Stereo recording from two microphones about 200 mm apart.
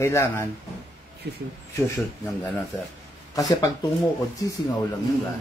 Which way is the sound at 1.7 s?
15° left (ahead or behind).